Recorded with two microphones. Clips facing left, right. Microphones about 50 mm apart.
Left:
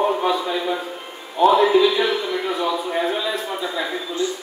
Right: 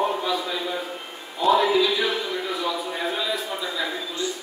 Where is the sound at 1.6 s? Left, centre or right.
Left.